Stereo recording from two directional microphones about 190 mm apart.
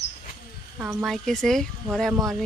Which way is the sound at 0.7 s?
10° right (ahead or behind).